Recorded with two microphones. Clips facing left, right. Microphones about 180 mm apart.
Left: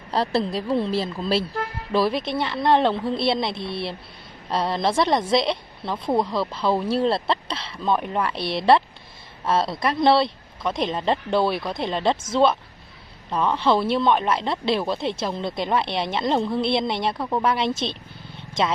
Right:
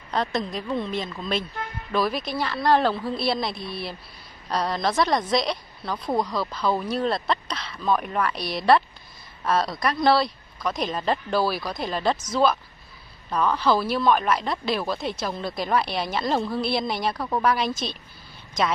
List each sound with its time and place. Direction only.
0.1 s a woman's voice: 30° left (ahead or behind)